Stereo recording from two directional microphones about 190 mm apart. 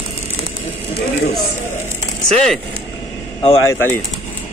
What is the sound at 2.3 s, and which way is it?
Speech, centre (ahead or behind).